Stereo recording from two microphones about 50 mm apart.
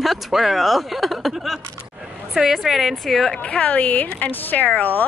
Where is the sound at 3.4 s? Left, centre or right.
Left.